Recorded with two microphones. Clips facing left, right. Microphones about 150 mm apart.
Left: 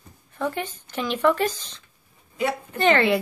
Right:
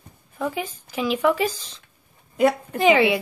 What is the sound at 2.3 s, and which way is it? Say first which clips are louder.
Speech: right 7 dB; 50° right (ahead or behind).